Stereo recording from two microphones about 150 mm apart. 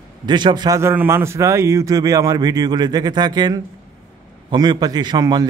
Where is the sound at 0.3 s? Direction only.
30° right (ahead or behind).